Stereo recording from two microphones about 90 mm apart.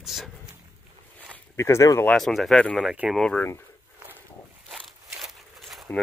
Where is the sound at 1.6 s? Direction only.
35° left (ahead or behind).